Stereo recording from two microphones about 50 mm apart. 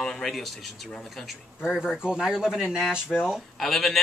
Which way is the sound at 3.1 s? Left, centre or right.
Centre.